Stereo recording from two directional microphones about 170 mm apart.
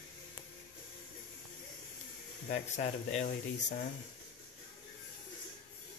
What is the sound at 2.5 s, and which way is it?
Speech, 45° left (ahead or behind).